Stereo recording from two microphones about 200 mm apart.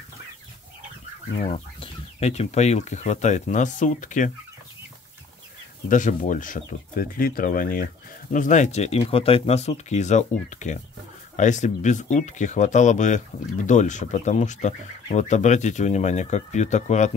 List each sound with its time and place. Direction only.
1.4 s speech: 30° left (ahead or behind)
5.9 s speech: 40° left (ahead or behind)